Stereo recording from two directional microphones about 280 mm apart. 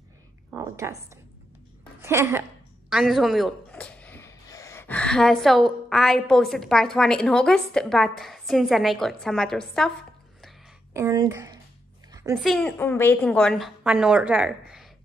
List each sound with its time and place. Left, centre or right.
0.5 s a woman's voice: centre
10.4 s a sound: centre
12.4 s a woman's voice: centre